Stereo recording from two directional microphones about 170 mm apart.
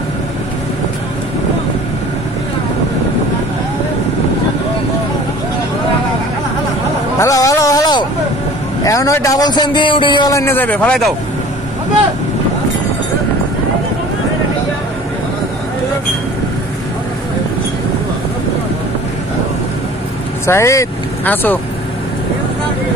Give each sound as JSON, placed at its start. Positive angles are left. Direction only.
{"t": 7.2, "sound": "hubbub", "side_deg": 20}
{"t": 8.8, "sound": "a man's voice", "side_deg": 20}
{"t": 20.4, "sound": "speech", "side_deg": 15}